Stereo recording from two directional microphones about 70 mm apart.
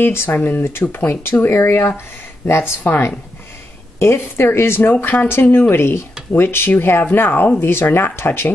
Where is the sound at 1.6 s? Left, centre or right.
Left.